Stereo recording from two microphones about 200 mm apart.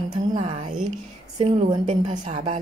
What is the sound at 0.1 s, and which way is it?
A woman's voice, 25° right (ahead or behind).